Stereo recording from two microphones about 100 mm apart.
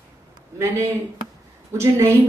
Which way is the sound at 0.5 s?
30° right (ahead or behind).